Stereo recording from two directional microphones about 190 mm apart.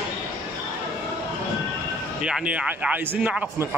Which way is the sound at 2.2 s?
5° right (ahead or behind).